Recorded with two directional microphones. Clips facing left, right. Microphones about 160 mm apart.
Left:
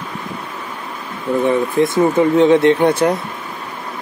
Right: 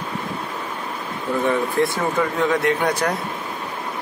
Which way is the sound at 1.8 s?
25° left (ahead or behind).